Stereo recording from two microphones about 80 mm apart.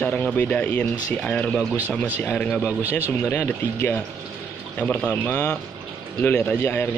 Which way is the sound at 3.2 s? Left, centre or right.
Left.